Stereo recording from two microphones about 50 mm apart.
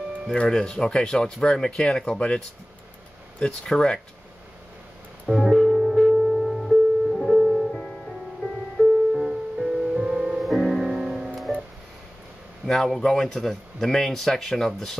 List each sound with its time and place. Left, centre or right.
0.3 s speech: centre
3.4 s speech: centre
5.2 s music: centre
5.5 s music: centre
8.8 s music: centre
10.4 s music: centre
12.6 s speech: centre